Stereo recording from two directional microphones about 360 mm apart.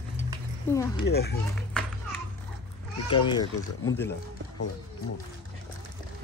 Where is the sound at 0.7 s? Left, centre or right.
Centre.